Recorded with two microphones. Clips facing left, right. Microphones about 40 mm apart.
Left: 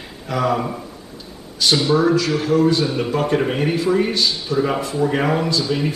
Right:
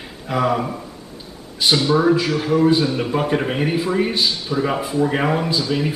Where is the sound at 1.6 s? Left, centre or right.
Right.